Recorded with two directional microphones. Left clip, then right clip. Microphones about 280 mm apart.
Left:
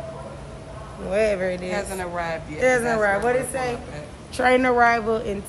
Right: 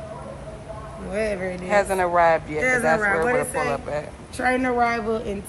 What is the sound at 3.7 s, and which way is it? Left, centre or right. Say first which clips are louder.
Speech: right 5 dB; centre.